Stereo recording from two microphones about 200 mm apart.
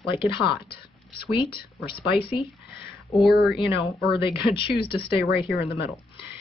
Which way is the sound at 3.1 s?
Centre (ahead or behind).